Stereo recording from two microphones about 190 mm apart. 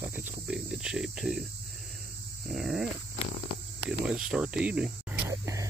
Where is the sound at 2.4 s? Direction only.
Centre (ahead or behind).